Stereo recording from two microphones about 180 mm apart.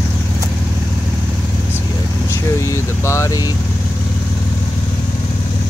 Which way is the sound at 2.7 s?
15° left (ahead or behind).